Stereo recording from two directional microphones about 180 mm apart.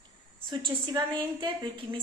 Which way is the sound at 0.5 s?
25° right (ahead or behind).